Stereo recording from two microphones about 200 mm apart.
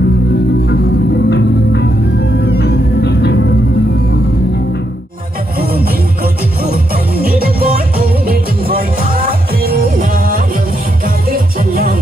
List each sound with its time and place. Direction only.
1.3 s music: 55° left (ahead or behind)
5.6 s music: 50° right (ahead or behind)